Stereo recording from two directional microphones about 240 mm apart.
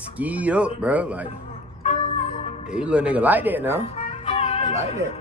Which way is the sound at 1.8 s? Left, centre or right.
Left.